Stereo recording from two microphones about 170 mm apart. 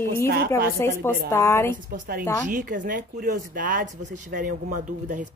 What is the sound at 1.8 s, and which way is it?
A woman's voice, 60° right (ahead or behind).